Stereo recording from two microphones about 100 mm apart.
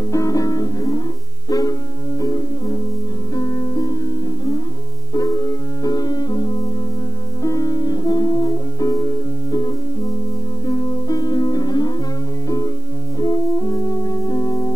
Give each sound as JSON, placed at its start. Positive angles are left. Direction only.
{"t": 0.1, "sound": "music", "side_deg": 35}
{"t": 5.1, "sound": "music", "side_deg": 35}